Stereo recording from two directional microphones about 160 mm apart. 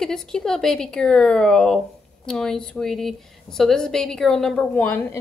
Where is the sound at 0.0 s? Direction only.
5° left (ahead or behind).